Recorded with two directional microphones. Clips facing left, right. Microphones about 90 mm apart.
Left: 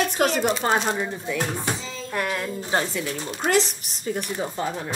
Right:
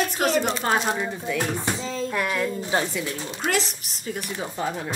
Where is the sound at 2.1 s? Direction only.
25° left (ahead or behind).